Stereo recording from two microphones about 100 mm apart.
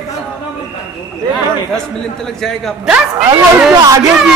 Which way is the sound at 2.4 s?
5° left (ahead or behind).